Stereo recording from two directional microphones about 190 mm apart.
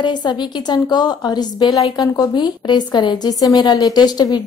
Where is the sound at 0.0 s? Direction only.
20° left (ahead or behind).